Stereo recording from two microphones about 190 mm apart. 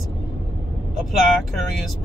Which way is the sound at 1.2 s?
Centre (ahead or behind).